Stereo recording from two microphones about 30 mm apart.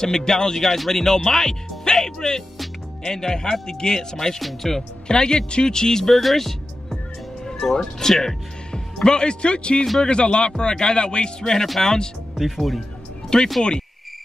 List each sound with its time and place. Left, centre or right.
0.0 s speech: left
4.4 s speech: centre
5.0 s speech: left
6.1 s speech: centre
9.0 s speech: left
12.4 s speech: centre
13.3 s speech: left